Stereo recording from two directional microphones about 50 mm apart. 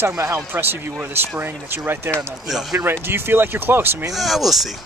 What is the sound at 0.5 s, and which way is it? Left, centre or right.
Speech, right.